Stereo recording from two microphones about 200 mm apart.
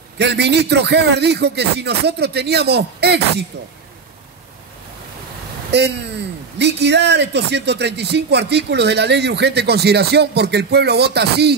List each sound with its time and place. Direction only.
0.2 s speech: 55° right (ahead or behind)
5.7 s speech: 55° right (ahead or behind)